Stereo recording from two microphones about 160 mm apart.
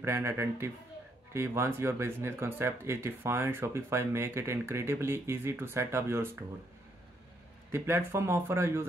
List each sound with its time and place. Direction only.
0.0 s speech: 15° right (ahead or behind)
7.7 s speech: 15° right (ahead or behind)